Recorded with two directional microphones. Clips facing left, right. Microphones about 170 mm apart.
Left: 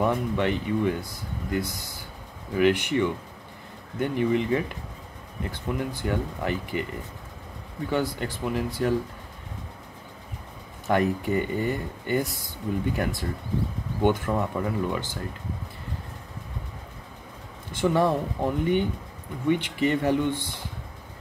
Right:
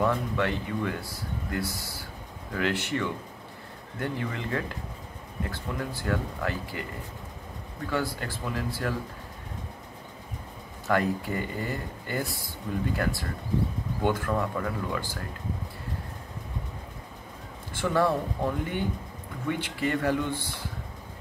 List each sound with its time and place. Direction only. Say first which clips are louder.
0.0 s speech: left 2 dB; 20° left (ahead or behind)
7.9 s speech: left 3 dB; 20° left (ahead or behind)
10.9 s speech: left 3 dB; 20° left (ahead or behind)
17.7 s speech: left 3 dB; 20° left (ahead or behind)